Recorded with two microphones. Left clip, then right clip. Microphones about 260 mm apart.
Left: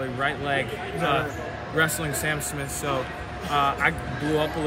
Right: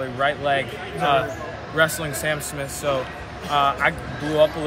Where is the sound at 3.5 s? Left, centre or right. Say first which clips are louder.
Right 3 dB; centre.